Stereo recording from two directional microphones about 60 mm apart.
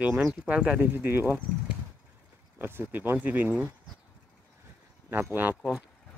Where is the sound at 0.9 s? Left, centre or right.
Right.